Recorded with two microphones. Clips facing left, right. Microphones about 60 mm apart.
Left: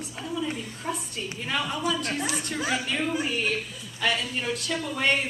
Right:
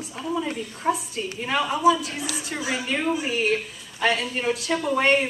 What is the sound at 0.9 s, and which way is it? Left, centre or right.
Speech, right.